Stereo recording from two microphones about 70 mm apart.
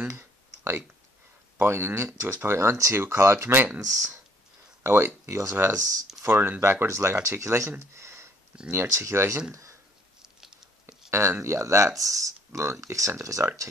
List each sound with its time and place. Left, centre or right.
0.0 s clicking: right
1.6 s speech: right
3.8 s speech: right
4.8 s speech: right
6.2 s speech: right
7.9 s a sound: right
8.6 s speech: right
10.2 s patter: centre
11.1 s speech: right